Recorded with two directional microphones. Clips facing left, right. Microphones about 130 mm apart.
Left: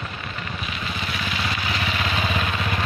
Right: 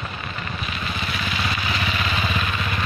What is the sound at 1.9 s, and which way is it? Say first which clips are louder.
Vehicle: even; 15° left (ahead or behind).